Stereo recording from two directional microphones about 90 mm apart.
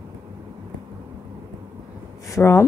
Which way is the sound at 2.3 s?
30° left (ahead or behind).